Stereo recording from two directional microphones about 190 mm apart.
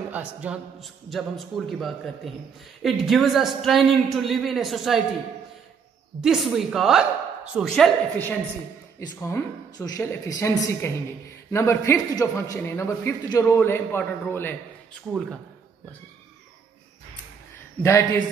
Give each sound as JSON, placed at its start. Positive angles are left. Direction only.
{"t": 0.1, "sound": "a man's voice", "side_deg": -5}
{"t": 6.2, "sound": "a man's voice", "side_deg": 0}
{"t": 9.0, "sound": "a man's voice", "side_deg": 20}
{"t": 17.8, "sound": "a man's voice", "side_deg": 15}